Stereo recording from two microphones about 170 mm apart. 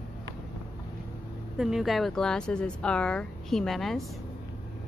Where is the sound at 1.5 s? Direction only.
Centre (ahead or behind).